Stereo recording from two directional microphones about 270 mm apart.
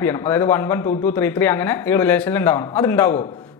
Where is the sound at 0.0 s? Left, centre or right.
Centre.